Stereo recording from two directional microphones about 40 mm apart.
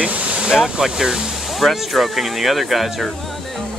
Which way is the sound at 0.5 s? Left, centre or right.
Centre.